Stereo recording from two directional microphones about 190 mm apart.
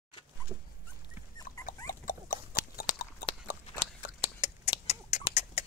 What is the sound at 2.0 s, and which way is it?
Horse, 45° left (ahead or behind).